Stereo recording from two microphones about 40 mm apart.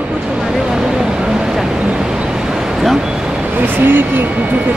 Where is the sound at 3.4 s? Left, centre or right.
Right.